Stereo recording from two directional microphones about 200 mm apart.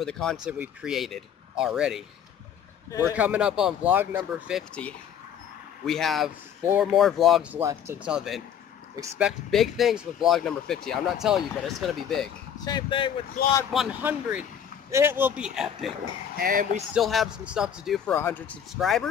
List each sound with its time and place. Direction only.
0.0 s speech: 5° left (ahead or behind)
5.9 s speech: centre (ahead or behind)
7.6 s speech: 10° right (ahead or behind)
12.6 s speech: 20° left (ahead or behind)
13.7 s speech: 5° right (ahead or behind)
16.3 s speech: 45° right (ahead or behind)
16.9 s speech: centre (ahead or behind)
18.1 s speech: 10° left (ahead or behind)